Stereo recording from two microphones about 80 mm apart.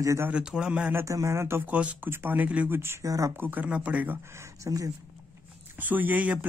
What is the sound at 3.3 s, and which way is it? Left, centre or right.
Speech, right.